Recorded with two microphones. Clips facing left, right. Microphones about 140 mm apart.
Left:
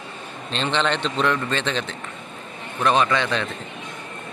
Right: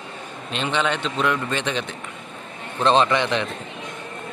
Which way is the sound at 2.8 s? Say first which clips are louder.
Right 2 dB; 25° right (ahead or behind).